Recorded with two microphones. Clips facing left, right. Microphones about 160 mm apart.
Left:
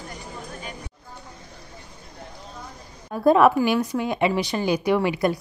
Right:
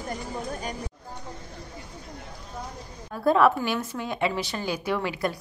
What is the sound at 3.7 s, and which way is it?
Speech, 15° left (ahead or behind).